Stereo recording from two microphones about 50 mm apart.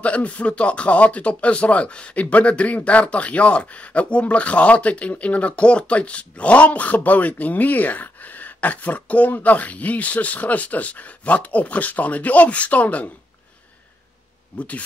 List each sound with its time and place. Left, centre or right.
0.0 s speech: left